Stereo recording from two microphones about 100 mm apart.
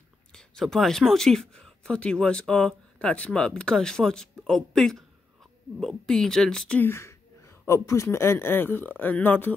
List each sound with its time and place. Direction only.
0.3 s speech: 5° left (ahead or behind)
6.8 s speech: 25° left (ahead or behind)